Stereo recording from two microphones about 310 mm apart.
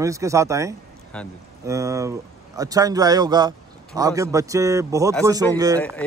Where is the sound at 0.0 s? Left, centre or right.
Centre.